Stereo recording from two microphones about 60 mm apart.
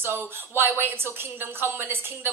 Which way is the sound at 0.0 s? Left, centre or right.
Right.